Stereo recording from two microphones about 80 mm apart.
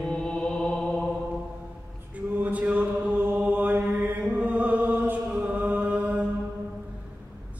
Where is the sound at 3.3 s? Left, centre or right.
Right.